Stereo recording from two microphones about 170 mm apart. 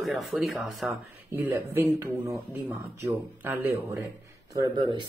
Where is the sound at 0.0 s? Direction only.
Centre (ahead or behind).